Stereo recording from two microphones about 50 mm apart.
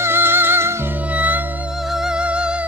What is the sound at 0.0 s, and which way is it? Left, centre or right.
Music, right.